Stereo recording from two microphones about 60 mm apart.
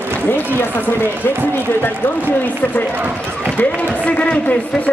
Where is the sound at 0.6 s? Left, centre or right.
Left.